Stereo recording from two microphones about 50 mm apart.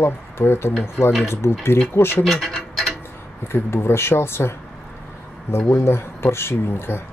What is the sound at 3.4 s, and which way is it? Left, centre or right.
Speech, left.